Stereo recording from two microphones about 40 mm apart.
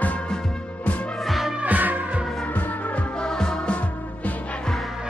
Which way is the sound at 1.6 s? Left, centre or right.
Right.